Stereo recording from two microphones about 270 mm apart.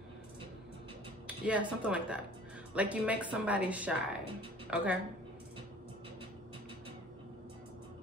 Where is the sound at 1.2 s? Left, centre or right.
Centre.